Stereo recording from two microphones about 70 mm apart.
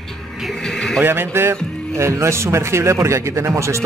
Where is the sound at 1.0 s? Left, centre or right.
Right.